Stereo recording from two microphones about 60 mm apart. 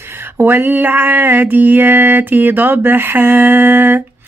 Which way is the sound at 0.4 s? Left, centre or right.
Right.